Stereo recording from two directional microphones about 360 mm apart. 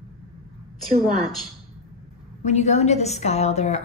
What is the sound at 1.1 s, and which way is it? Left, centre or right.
Speech, centre.